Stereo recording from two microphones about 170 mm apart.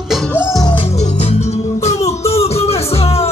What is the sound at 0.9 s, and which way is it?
Music, 40° left (ahead or behind).